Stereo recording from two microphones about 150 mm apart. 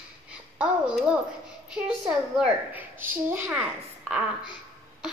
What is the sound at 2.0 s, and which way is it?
A woman's voice, 5° right (ahead or behind).